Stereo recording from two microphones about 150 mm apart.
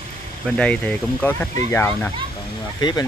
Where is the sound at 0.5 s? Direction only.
5° left (ahead or behind).